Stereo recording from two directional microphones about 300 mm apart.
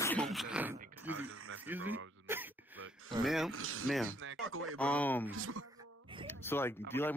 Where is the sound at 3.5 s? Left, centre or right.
Right.